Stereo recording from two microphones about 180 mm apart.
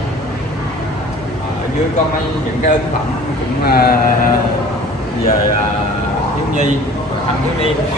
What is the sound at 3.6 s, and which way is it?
Speech, 60° left (ahead or behind).